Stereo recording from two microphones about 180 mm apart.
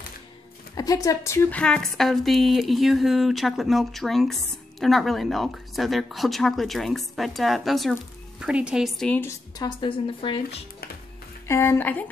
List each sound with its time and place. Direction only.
0.7 s speech: 20° left (ahead or behind)
9.6 s speech: 25° left (ahead or behind)
11.4 s a woman's voice: 15° left (ahead or behind)